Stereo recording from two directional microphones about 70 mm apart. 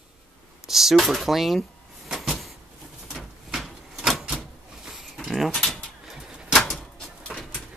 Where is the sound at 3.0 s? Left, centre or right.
Centre.